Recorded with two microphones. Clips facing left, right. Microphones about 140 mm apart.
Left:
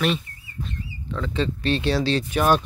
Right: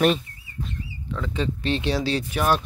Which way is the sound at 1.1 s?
10° right (ahead or behind).